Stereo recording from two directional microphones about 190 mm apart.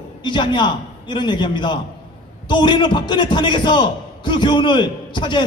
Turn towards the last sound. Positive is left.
turn(degrees=25)  # may be behind; listen again after turning